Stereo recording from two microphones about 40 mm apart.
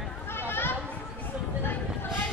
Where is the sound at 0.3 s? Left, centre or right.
Left.